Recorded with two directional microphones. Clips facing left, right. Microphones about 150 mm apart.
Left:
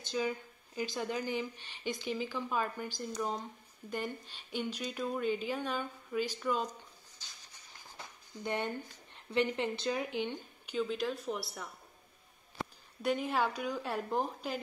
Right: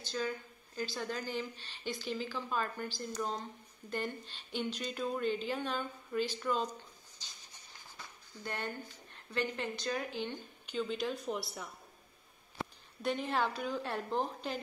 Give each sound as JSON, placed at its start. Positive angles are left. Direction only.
{"t": 0.0, "sound": "a sound", "side_deg": 15}
{"t": 0.7, "sound": "a woman's voice", "side_deg": 15}
{"t": 8.5, "sound": "a woman's voice", "side_deg": 20}
{"t": 10.8, "sound": "speech", "side_deg": 5}
{"t": 13.0, "sound": "a woman's voice", "side_deg": 10}